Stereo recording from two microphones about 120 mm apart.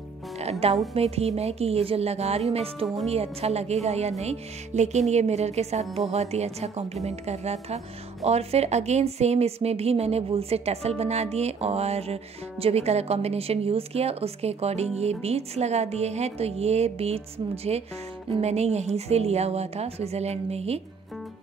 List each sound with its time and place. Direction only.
0.4 s music: 60° right (ahead or behind)
0.9 s speech: 60° right (ahead or behind)